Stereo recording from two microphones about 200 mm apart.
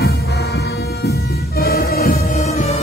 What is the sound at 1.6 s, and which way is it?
Music, 50° left (ahead or behind).